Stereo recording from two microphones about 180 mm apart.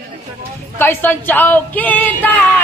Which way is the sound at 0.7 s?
10° left (ahead or behind).